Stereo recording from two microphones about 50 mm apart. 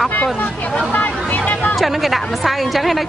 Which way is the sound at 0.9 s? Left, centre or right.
Left.